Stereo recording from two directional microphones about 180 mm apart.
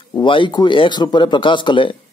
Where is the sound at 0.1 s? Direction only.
25° left (ahead or behind).